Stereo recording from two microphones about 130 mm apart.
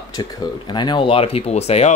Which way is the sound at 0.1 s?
35° left (ahead or behind).